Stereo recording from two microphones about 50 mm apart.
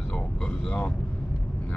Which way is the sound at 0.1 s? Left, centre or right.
Left.